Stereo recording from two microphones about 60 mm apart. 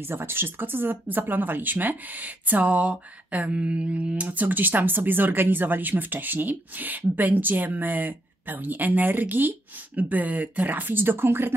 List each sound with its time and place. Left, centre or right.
0.1 s speech: right